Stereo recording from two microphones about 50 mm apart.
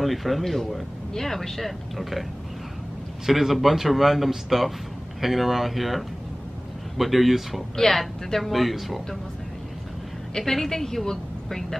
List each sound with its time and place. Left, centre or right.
0.0 s speech: centre
3.3 s speech: centre
10.3 s a woman's voice: centre